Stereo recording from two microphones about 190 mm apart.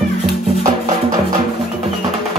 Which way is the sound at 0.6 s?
45° right (ahead or behind).